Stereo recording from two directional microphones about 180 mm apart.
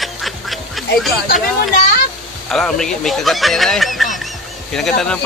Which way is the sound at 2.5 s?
5° left (ahead or behind).